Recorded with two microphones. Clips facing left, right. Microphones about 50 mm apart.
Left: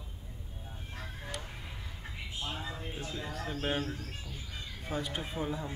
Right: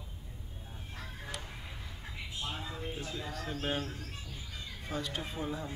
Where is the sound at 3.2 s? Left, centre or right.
Centre.